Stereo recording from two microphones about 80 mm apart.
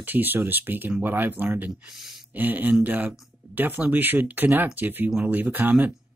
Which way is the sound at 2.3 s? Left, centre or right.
Right.